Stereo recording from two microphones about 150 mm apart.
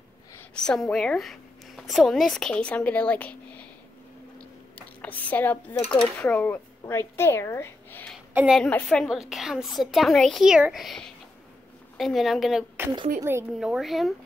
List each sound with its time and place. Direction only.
0.4 s a woman's voice: 5° left (ahead or behind)
4.7 s a woman's voice: 10° left (ahead or behind)
8.5 s a woman's voice: centre (ahead or behind)
13.2 s speech: 20° right (ahead or behind)
13.5 s a woman's voice: 5° right (ahead or behind)